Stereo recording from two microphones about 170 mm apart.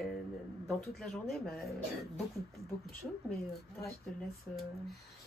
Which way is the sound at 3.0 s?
Centre (ahead or behind).